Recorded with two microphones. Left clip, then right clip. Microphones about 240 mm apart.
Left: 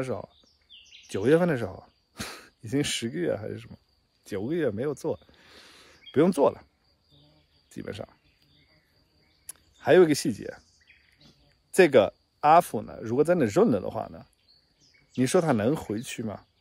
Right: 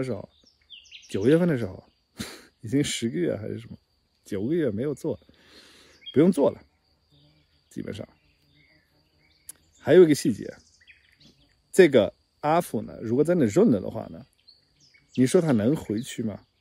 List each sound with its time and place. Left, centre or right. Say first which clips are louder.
0.0 s speech: right 1 dB; centre
0.7 s a sound: right 4 dB; left
1.0 s speech: right 1 dB; centre
7.7 s speech: right 1 dB; centre
9.5 s speech: even; centre
10.9 s bird vocalization: right 4 dB; left
11.7 s speech: right 1 dB; centre